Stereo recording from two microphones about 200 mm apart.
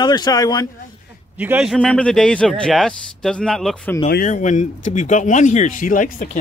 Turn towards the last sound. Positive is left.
turn(degrees=40)  # may be behind; listen again after turning